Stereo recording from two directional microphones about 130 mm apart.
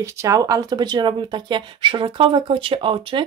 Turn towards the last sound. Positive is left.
turn(degrees=-40)  # may be behind; listen again after turning